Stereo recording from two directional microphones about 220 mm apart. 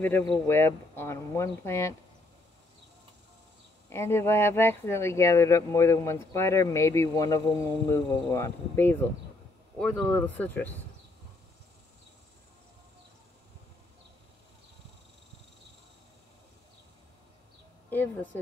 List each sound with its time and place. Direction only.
0.0 s speech: 10° left (ahead or behind)
3.9 s speech: 10° left (ahead or behind)
17.8 s a woman's voice: 10° left (ahead or behind)